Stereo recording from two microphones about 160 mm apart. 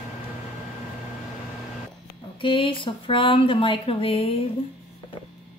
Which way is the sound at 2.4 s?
30° left (ahead or behind).